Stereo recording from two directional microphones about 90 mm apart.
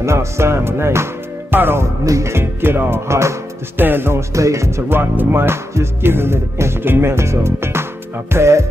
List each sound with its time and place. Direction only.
0.0 s music: 30° right (ahead or behind)